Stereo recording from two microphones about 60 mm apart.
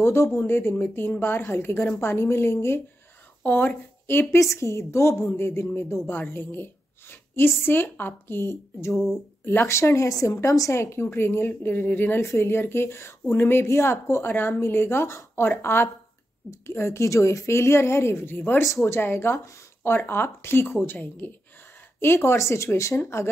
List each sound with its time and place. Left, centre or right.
0.0 s a woman's voice: left
3.4 s speech: left
4.1 s a woman's voice: left
4.4 s a woman's voice: left
8.9 s speech: centre
9.4 s a woman's voice: left
9.8 s a woman's voice: left
18.6 s speech: left
18.9 s a woman's voice: left